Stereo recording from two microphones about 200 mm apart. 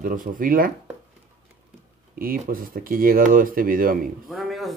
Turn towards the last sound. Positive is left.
turn(degrees=0)  # may be behind; listen again after turning